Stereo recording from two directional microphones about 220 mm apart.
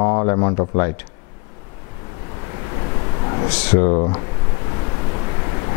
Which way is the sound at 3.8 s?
25° left (ahead or behind).